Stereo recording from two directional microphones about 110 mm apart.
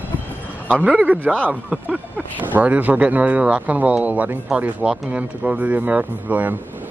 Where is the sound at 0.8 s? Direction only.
10° right (ahead or behind).